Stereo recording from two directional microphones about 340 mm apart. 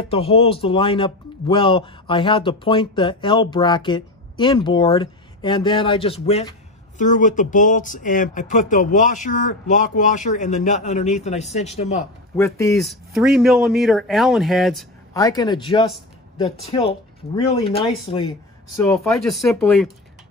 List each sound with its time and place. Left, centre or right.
0.0 s a man's voice: centre
12.0 s a man's voice: centre
18.9 s speech: centre